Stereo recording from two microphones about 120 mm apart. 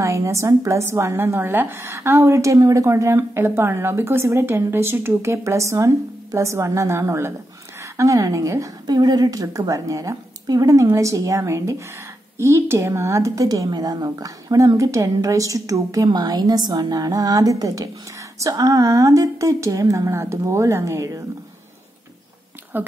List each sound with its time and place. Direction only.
0.0 s a woman's voice: 25° right (ahead or behind)
22.7 s speech: 15° right (ahead or behind)